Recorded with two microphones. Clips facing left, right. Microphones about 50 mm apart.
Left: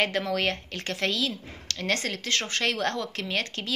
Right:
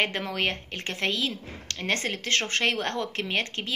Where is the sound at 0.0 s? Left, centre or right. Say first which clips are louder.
Left 1 dB; right.